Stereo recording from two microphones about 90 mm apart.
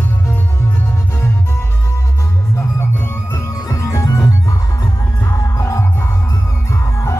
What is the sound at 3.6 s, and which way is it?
Music, 40° left (ahead or behind).